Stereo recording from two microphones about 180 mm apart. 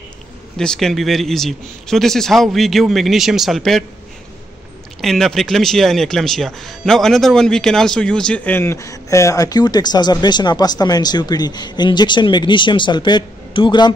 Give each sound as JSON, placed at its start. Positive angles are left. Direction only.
{"t": 0.6, "sound": "speech", "side_deg": 0}
{"t": 5.0, "sound": "speech", "side_deg": 0}